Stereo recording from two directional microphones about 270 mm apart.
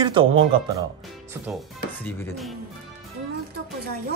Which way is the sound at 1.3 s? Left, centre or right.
Centre.